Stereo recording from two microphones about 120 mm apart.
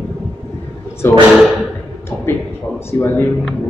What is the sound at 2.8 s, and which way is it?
Speech, 20° left (ahead or behind).